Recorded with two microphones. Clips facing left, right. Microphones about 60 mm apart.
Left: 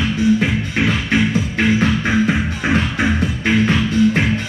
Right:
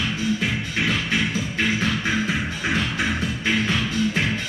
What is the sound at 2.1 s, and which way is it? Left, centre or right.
Music, left.